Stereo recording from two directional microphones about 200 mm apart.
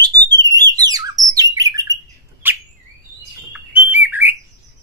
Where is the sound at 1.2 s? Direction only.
20° right (ahead or behind).